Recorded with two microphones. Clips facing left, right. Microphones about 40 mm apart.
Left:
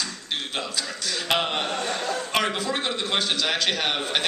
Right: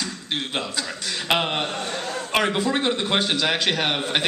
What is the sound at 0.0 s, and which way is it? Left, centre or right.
A man's voice, centre.